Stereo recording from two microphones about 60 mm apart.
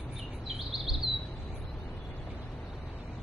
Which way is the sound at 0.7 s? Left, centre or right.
Centre.